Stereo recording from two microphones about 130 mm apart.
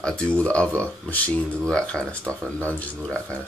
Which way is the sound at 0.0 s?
5° left (ahead or behind).